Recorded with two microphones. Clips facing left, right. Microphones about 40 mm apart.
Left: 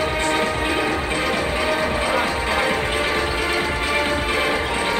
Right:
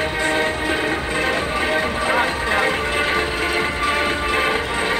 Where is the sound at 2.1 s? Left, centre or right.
Right.